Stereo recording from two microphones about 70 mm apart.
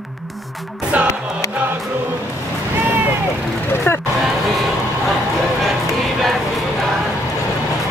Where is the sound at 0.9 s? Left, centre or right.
Right.